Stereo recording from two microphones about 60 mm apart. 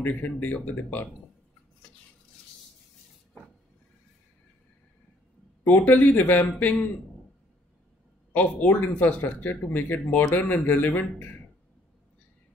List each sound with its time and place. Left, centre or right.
0.0 s a man's voice: left
5.6 s speech: left
8.3 s a man's voice: left